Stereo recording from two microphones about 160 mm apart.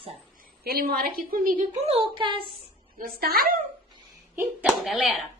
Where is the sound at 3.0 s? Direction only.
70° right (ahead or behind).